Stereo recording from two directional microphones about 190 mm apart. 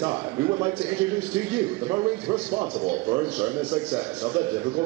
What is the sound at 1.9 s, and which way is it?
Speech, 25° right (ahead or behind).